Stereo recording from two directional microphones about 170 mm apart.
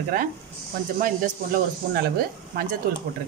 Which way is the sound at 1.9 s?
65° right (ahead or behind).